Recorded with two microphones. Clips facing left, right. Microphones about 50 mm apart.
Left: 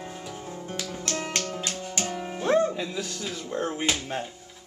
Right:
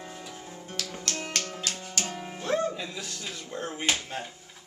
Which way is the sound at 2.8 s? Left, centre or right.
Centre.